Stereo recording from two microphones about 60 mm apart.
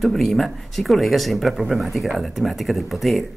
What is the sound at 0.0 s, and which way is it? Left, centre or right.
Speech, centre.